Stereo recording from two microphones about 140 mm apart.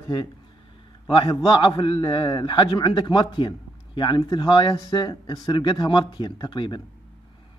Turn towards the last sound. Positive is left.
turn(degrees=35)  # may be behind; listen again after turning